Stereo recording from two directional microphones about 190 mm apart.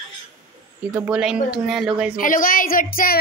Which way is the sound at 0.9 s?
5° right (ahead or behind).